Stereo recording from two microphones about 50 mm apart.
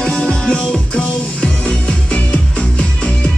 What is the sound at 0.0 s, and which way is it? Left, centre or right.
Music, centre.